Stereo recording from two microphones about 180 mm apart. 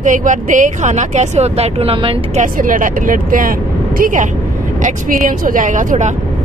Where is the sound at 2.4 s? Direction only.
50° right (ahead or behind).